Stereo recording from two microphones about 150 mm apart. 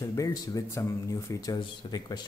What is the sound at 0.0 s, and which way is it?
Speech, 20° left (ahead or behind).